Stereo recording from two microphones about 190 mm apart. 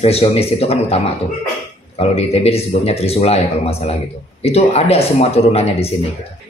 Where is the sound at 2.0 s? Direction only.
30° left (ahead or behind).